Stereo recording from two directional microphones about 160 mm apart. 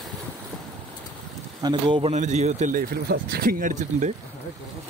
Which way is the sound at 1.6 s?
30° right (ahead or behind).